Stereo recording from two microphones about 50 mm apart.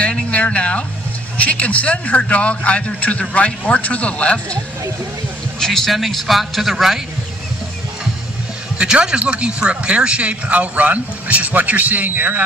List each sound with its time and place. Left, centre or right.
0.0 s a man's voice: left
5.6 s a man's voice: centre
8.7 s speech: centre; by 12.4 s right